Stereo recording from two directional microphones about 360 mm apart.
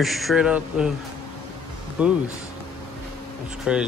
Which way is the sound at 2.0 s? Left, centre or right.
Centre.